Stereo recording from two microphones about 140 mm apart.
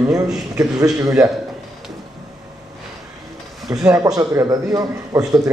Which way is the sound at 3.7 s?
25° right (ahead or behind).